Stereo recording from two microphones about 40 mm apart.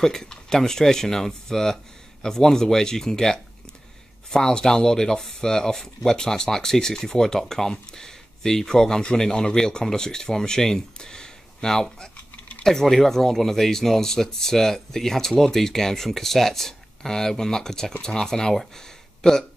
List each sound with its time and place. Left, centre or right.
0.0 s speech: centre